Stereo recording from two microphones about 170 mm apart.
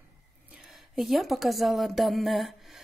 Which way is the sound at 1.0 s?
Centre (ahead or behind).